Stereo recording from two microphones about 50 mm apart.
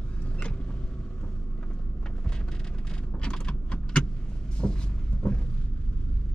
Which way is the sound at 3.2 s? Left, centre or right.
Centre.